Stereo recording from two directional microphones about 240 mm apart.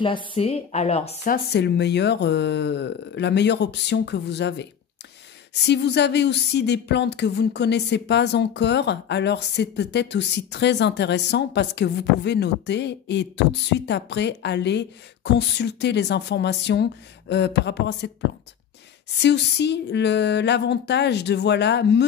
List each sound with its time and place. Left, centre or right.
0.0 s speech: left
19.2 s speech: left